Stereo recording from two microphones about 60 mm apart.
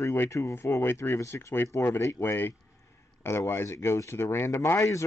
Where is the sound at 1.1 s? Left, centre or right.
Left.